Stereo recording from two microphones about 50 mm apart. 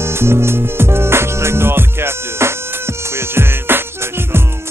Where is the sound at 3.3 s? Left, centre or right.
Right.